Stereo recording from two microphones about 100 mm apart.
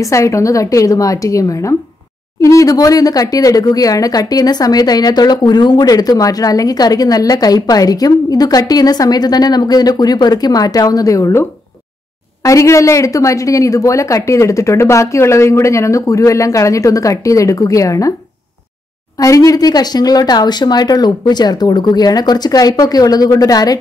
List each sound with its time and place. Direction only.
0.0 s speech: 30° left (ahead or behind)
12.4 s speech: 30° left (ahead or behind)
19.1 s speech: 35° left (ahead or behind)